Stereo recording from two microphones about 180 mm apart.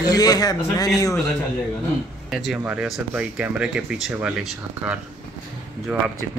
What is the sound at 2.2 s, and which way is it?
Speech, centre (ahead or behind).